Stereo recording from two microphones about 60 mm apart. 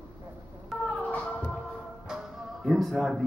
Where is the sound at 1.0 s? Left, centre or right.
Left.